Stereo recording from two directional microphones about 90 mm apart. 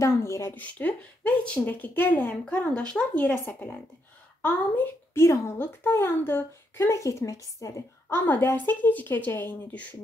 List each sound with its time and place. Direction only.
0.0 s speech: 30° left (ahead or behind)
0.6 s speech: 15° left (ahead or behind)
3.3 s speech: 25° left (ahead or behind)
8.1 s speech: 25° left (ahead or behind)